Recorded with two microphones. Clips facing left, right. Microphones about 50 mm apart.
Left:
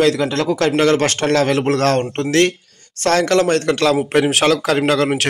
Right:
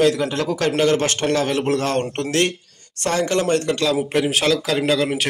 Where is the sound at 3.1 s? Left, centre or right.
Left.